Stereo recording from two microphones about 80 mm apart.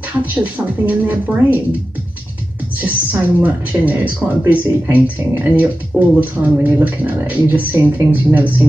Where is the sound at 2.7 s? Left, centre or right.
Right.